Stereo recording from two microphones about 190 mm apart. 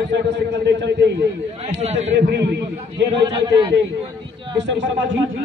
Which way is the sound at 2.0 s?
65° right (ahead or behind).